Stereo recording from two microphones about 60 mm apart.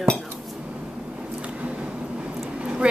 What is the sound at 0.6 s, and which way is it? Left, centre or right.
Vehicle, centre.